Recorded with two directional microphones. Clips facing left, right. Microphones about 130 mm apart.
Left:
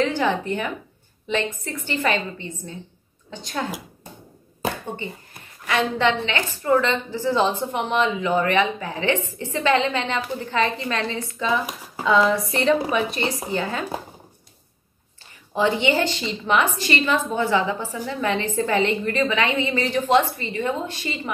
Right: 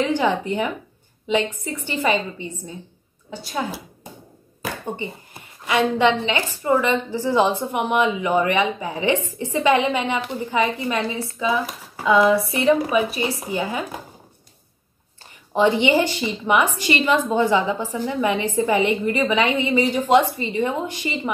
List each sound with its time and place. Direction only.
0.1 s a woman's voice: 15° right (ahead or behind)
4.9 s a woman's voice: 20° right (ahead or behind)
15.5 s a woman's voice: 15° right (ahead or behind)